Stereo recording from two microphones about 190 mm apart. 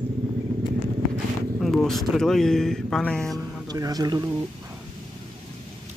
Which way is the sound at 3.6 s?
20° right (ahead or behind).